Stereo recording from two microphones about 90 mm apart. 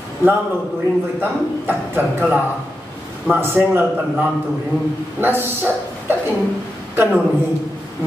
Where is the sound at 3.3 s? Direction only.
25° right (ahead or behind).